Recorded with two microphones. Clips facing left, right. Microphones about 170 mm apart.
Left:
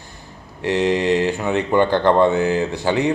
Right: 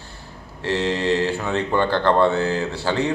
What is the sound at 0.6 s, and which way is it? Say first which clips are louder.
A man's voice: left 4 dB; 15° left (ahead or behind).